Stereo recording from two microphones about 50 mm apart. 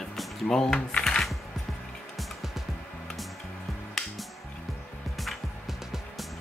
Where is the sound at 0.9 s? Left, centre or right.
Centre.